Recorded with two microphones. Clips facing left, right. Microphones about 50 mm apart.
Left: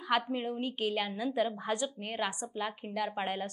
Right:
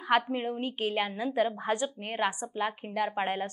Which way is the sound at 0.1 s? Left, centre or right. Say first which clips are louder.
Right 4 dB; right.